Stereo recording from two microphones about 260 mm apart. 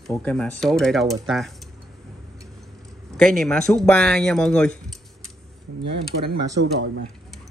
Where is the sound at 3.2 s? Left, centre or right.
Centre.